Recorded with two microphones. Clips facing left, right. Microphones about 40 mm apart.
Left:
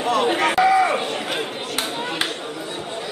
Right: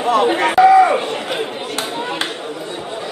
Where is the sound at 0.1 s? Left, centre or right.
Centre.